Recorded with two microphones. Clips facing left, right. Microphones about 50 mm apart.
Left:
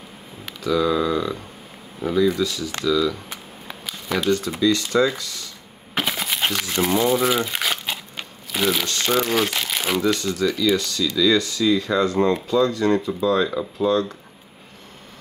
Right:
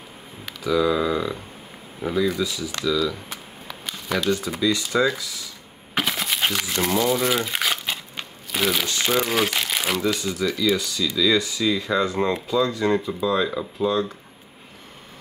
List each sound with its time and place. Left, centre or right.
0.6 s speech: centre
3.8 s a sound: centre
4.5 s speech: centre
5.9 s crumpling: centre
6.9 s speech: centre
7.2 s crumpling: centre
8.8 s speech: centre